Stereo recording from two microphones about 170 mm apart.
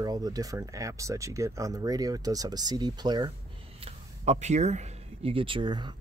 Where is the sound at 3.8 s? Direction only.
40° right (ahead or behind).